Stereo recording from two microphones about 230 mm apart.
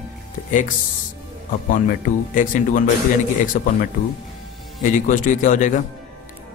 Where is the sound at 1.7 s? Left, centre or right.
Left.